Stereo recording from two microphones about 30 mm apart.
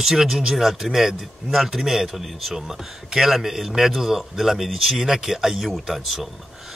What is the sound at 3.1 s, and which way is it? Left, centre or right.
A man's voice, centre.